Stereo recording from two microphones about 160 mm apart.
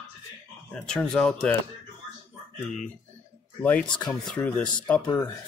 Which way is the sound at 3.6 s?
10° left (ahead or behind).